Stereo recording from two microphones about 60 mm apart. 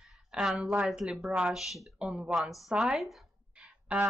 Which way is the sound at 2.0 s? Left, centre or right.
Centre.